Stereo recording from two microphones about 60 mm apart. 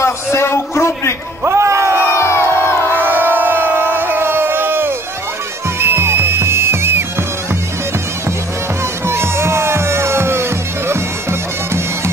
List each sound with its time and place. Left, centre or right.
0.0 s a sound: left
1.4 s a sound: right
2.1 s crowd: left
2.9 s crowd: right
5.8 s music: right
9.0 s music: right